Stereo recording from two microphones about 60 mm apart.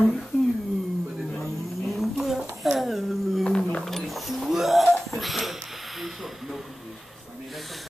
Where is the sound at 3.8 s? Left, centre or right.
Centre.